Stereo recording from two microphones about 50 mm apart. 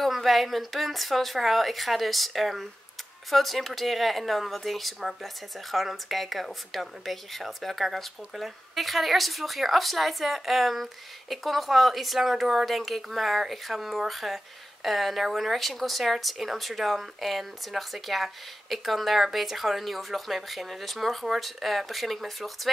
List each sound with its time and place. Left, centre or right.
0.0 s speech: centre